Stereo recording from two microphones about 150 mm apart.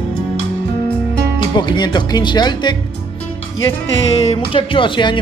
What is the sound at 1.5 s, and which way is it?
Music, 30° left (ahead or behind).